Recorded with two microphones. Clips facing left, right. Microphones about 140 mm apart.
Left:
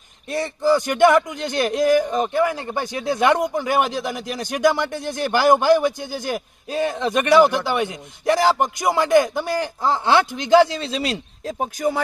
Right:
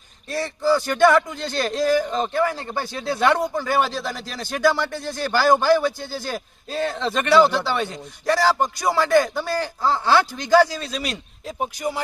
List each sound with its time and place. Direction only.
0.3 s a man's voice: 20° left (ahead or behind)